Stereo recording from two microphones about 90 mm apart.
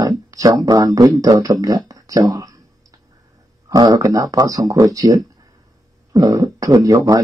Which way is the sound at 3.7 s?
45° right (ahead or behind).